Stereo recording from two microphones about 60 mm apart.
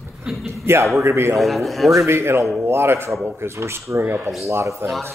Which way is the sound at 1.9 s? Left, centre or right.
Right.